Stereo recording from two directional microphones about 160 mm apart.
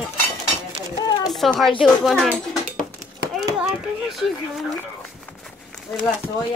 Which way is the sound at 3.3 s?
Centre (ahead or behind).